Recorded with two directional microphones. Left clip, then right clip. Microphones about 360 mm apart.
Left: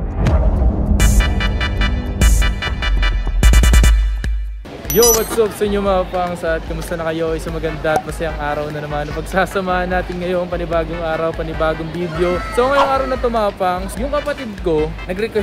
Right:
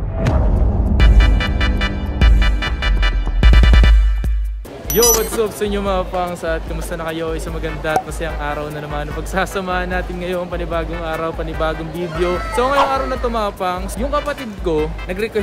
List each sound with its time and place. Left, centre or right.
0.9 s music: centre
4.9 s speech: centre